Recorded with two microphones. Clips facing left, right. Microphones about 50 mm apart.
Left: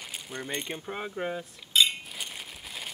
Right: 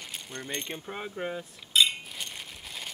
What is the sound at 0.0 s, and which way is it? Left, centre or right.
Coin, centre.